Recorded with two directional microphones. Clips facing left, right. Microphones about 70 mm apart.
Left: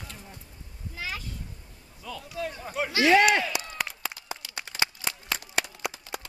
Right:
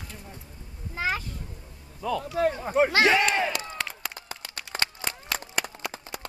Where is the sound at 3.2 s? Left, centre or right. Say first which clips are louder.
Left 2 dB; right.